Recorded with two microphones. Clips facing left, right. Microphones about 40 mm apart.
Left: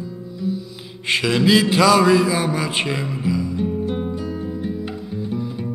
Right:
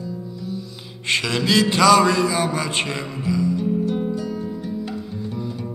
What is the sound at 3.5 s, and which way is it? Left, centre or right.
Music, left.